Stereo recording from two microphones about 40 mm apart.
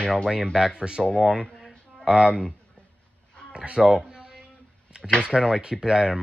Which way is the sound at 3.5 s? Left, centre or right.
Right.